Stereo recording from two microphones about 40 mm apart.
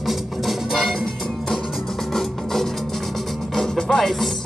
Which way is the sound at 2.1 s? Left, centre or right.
Centre.